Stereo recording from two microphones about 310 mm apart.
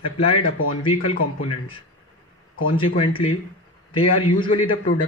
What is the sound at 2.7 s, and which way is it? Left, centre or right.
A man's voice, centre.